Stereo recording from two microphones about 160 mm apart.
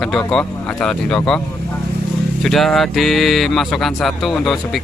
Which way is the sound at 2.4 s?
Centre (ahead or behind).